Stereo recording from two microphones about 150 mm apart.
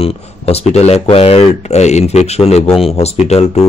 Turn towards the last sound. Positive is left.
turn(degrees=45)  # may be behind; listen again after turning